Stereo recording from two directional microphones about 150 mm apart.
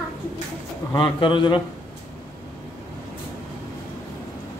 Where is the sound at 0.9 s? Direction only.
30° left (ahead or behind).